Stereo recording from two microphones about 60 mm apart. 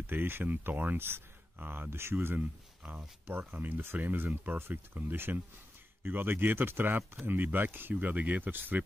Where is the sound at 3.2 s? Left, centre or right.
Right.